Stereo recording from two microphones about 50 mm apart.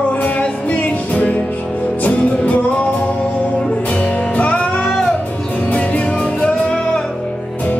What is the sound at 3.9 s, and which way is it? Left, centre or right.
Music, left.